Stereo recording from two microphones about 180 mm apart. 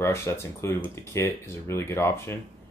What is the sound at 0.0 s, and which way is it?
Speech, 15° left (ahead or behind).